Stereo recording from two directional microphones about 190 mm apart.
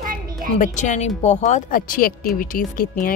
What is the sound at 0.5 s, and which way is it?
Speech, 40° left (ahead or behind).